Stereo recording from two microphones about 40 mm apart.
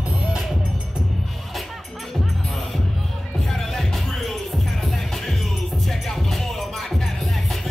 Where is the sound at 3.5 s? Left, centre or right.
Centre.